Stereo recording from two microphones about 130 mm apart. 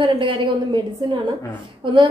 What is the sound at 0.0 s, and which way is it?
A woman's voice, 40° right (ahead or behind).